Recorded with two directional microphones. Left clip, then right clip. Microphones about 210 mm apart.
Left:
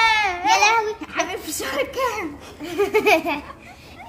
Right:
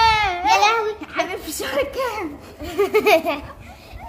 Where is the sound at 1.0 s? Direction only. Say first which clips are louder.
Right 1 dB; 10° left (ahead or behind).